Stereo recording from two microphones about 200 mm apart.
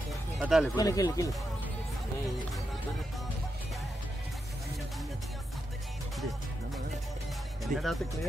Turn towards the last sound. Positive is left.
turn(degrees=-40)  # may be behind; listen again after turning